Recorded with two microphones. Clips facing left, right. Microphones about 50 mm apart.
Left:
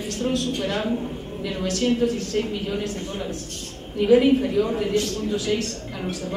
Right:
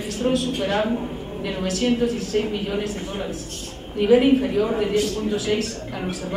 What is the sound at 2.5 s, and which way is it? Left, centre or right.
Speech, right.